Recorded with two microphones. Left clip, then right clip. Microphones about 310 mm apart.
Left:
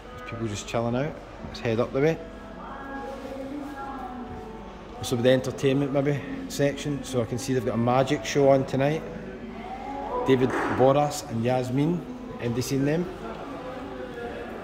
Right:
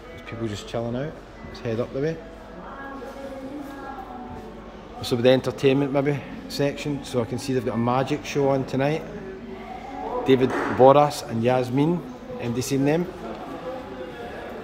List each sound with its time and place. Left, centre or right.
0.5 s a man's voice: centre
5.0 s a man's voice: centre
10.2 s a man's voice: centre